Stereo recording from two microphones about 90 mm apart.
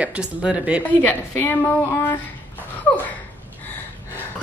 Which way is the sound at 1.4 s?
25° left (ahead or behind).